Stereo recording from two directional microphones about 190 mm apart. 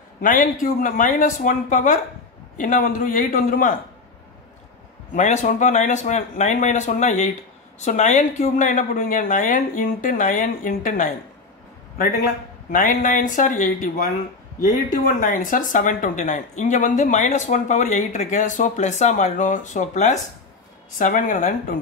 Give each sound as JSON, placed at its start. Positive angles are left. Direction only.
{"t": 0.2, "sound": "a woman's voice", "side_deg": 45}
{"t": 5.1, "sound": "a woman's voice", "side_deg": 40}
{"t": 12.7, "sound": "a woman's voice", "side_deg": 45}